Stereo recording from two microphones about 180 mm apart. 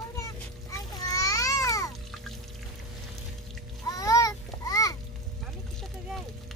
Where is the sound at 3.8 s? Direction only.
20° left (ahead or behind).